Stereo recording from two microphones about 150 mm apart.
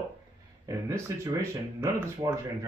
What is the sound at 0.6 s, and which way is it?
Speech, 20° right (ahead or behind).